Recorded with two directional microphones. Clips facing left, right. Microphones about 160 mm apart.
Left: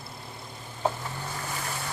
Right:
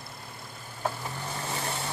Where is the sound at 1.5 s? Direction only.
25° right (ahead or behind).